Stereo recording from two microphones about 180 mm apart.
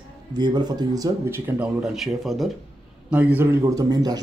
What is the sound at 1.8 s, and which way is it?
A man's voice, centre (ahead or behind).